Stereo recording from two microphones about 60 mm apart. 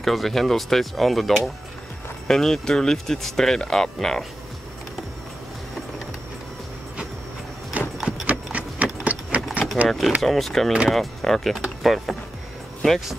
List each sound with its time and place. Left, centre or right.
0.0 s speech: centre
7.8 s a sound: right
9.8 s speech: centre
11.8 s mechanisms: centre